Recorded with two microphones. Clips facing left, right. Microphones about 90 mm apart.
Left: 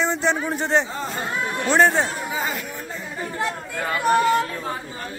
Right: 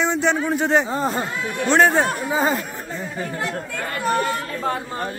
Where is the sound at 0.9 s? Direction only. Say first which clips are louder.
Right 6 dB; 40° right (ahead or behind).